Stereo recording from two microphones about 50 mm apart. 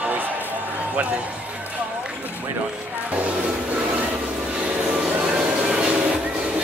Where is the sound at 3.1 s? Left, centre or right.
Right.